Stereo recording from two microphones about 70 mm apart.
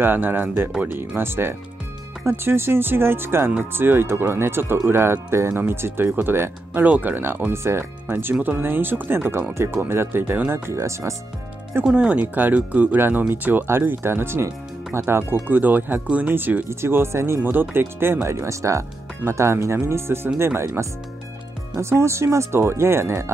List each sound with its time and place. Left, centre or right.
0.0 s speech: right
10.7 s speech: right
11.8 s speech: centre; by 23.3 s right